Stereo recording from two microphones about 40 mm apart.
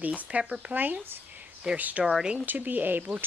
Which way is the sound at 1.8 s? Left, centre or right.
Right.